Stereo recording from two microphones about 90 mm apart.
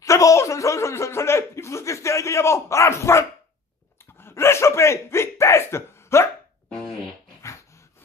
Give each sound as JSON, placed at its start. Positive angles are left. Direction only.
{"t": 0.0, "sound": "speech", "side_deg": 35}
{"t": 4.0, "sound": "a sound", "side_deg": 25}
{"t": 7.4, "sound": "dog", "side_deg": 35}